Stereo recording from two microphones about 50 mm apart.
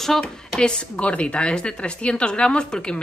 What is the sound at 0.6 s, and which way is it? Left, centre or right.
A woman's voice, centre.